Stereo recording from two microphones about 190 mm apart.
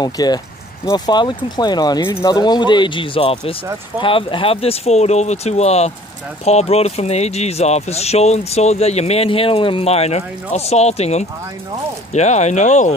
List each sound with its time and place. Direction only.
0.0 s speech: 20° left (ahead or behind); by 12.9 s 40° left (ahead or behind)